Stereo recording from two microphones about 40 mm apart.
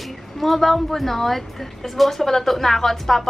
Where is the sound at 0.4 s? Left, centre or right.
Centre.